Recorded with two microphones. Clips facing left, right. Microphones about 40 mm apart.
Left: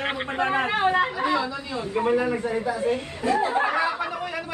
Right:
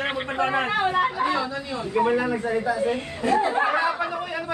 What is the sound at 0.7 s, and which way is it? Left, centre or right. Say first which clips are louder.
Speech: even; left.